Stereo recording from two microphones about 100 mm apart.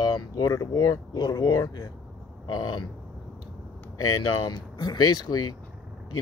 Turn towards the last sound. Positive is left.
turn(degrees=45)  # may be behind; listen again after turning